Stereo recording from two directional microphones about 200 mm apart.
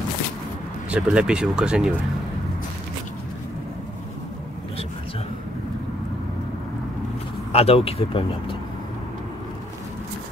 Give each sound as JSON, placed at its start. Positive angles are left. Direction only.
{"t": 0.8, "sound": "speech", "side_deg": -5}
{"t": 7.5, "sound": "speech", "side_deg": 30}